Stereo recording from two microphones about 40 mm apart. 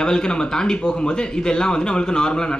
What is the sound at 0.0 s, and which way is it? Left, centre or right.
Speech, centre.